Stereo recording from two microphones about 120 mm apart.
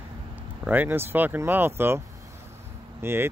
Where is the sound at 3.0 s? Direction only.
20° right (ahead or behind).